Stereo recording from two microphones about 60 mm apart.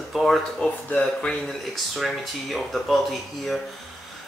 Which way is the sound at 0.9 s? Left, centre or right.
Centre.